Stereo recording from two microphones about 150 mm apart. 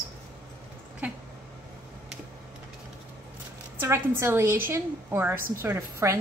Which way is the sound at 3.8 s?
15° right (ahead or behind).